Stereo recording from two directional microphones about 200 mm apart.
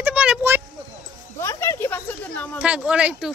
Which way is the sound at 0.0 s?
5° right (ahead or behind).